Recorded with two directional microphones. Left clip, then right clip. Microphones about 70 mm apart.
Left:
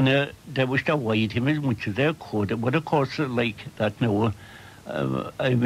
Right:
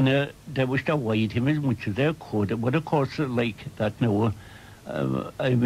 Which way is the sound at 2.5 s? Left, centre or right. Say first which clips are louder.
Left 3 dB; left.